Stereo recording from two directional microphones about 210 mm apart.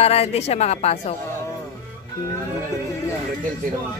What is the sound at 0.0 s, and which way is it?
A woman's voice, 30° left (ahead or behind).